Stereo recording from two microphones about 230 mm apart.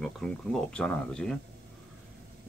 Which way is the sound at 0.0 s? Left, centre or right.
Centre.